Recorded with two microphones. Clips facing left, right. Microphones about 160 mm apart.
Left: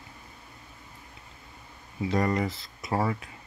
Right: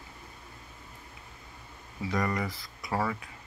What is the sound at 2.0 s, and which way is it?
Speech, 30° left (ahead or behind).